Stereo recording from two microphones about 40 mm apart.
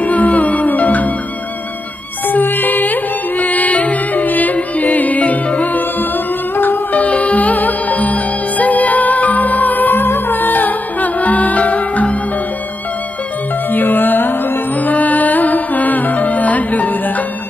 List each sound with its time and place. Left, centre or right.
0.0 s music: left
2.2 s music: left
5.8 s music: left
6.9 s music: left
13.7 s music: left